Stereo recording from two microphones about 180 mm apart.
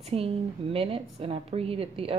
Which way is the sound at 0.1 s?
30° right (ahead or behind).